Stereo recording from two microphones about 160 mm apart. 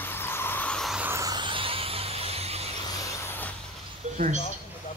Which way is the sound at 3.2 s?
10° left (ahead or behind).